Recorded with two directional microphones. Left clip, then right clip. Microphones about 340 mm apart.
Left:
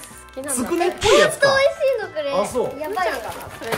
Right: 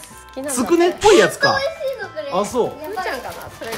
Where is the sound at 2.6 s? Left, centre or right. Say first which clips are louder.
Right 3 dB; right.